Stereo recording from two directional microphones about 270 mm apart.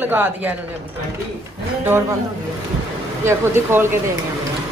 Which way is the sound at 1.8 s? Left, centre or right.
Centre.